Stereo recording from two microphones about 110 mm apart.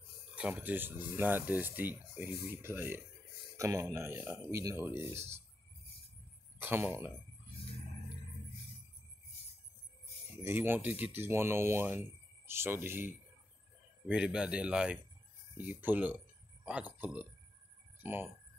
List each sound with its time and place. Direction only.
0.4 s speech: 15° right (ahead or behind)
6.6 s speech: 20° right (ahead or behind)
10.4 s speech: 20° right (ahead or behind)
14.0 s speech: 10° right (ahead or behind)